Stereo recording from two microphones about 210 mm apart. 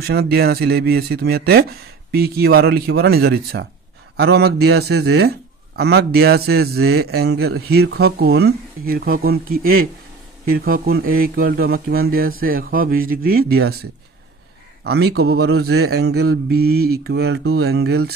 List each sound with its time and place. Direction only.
0.0 s a man's voice: 50° right (ahead or behind)
14.8 s a man's voice: 50° right (ahead or behind)